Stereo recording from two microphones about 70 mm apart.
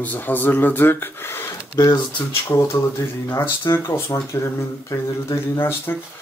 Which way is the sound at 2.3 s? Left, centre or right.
Left.